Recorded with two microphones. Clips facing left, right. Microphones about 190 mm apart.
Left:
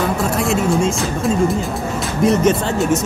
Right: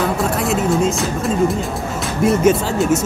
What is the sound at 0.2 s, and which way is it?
Speech, centre (ahead or behind).